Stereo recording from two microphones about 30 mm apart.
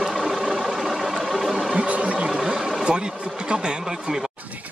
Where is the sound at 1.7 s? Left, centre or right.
Right.